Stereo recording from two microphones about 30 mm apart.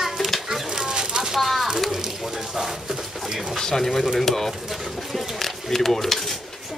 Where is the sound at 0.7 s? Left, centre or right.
Centre.